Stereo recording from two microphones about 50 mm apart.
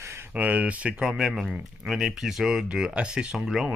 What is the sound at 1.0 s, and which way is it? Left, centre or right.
Speech, centre.